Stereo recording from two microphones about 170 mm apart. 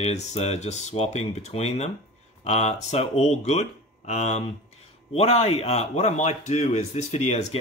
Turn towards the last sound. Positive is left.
turn(degrees=40)  # may be behind; listen again after turning